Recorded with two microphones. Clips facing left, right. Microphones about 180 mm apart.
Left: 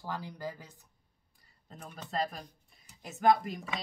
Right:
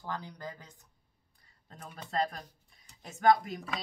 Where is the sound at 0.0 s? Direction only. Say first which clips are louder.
Left 1 dB; 5° left (ahead or behind).